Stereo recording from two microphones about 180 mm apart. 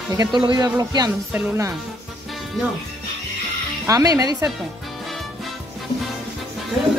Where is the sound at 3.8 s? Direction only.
20° right (ahead or behind).